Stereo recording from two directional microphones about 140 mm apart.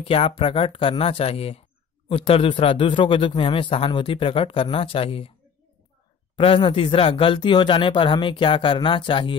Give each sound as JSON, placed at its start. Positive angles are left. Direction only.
{"t": 0.0, "sound": "a man's voice", "side_deg": 40}
{"t": 6.3, "sound": "a man's voice", "side_deg": 40}